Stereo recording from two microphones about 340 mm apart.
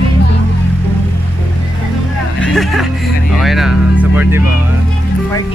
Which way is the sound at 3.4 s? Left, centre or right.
Centre.